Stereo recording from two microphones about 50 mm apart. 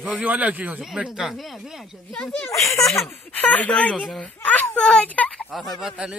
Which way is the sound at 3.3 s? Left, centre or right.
Left.